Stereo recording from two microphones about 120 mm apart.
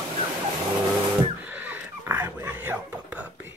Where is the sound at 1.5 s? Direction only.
15° right (ahead or behind).